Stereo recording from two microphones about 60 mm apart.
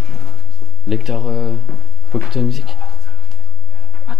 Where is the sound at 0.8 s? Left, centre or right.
Centre.